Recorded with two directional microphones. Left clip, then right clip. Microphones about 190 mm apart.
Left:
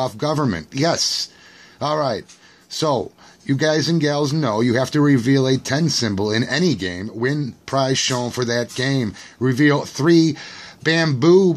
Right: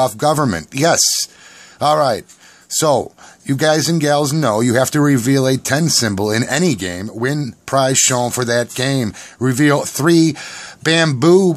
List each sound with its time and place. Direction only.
0.0 s speech: 35° right (ahead or behind)